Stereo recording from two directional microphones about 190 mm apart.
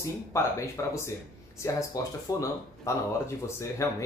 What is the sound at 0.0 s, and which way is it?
Speech, 15° left (ahead or behind).